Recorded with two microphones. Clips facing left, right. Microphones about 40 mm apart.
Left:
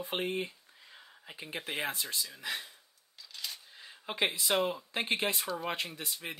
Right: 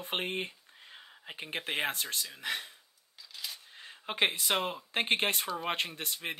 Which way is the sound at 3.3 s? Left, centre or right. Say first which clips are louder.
Even; centre.